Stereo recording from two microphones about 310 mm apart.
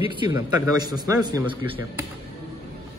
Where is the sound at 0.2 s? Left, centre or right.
Centre.